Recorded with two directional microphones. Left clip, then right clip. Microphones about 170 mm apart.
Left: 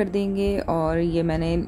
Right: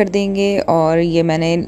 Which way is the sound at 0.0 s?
15° right (ahead or behind).